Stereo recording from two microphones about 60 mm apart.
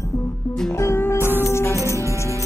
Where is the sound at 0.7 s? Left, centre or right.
Left.